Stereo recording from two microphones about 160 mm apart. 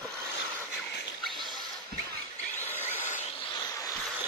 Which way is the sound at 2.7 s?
15° left (ahead or behind).